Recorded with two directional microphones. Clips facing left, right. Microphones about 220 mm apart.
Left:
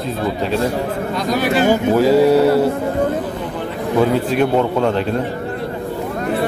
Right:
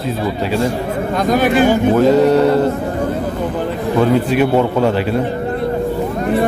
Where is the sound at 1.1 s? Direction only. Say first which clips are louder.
Right 5 dB; 50° right (ahead or behind).